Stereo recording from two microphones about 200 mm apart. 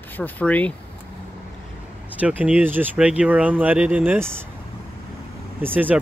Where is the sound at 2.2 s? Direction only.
10° right (ahead or behind).